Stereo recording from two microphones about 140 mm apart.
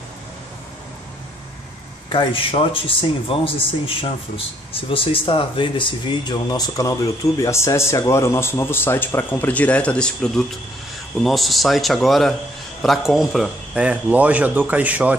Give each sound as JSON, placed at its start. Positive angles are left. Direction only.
{"t": 2.0, "sound": "speech", "side_deg": 40}